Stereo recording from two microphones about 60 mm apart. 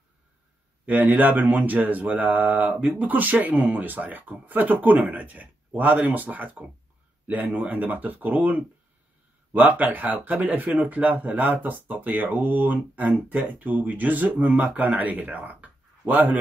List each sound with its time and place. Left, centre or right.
0.8 s speech: right